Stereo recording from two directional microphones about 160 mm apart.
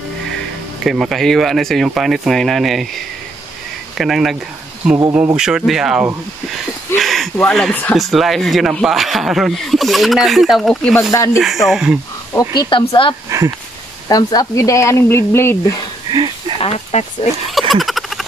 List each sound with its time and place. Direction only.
0.8 s speech: centre (ahead or behind)
4.0 s speech: centre (ahead or behind)
11.0 s speech: 20° left (ahead or behind)
11.3 s speech: centre (ahead or behind)
12.3 s speech: 25° left (ahead or behind)
13.3 s speech: 20° right (ahead or behind)
14.0 s speech: 25° left (ahead or behind)
16.1 s a sound: 30° right (ahead or behind)
16.5 s speech: 40° left (ahead or behind)
17.5 s bird: centre (ahead or behind)